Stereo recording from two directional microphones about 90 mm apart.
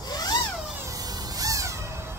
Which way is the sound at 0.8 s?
40° right (ahead or behind).